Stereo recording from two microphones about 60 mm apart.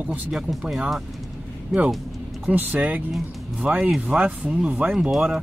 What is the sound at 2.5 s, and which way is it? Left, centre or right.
Speech, right.